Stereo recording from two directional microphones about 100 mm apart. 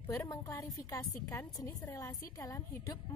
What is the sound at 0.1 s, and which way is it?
A woman's voice, 25° left (ahead or behind).